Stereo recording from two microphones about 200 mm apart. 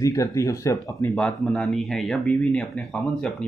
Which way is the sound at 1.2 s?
5° left (ahead or behind).